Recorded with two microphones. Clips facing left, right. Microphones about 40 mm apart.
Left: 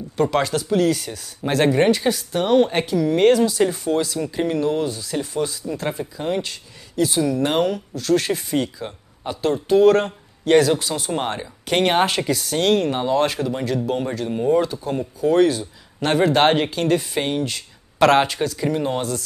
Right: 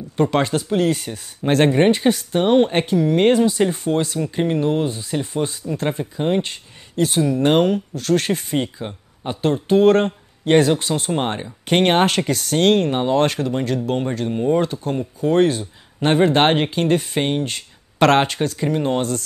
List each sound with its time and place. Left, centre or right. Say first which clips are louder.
0.2 s speech: right 1 dB; right
11.1 s speech: right 2 dB; right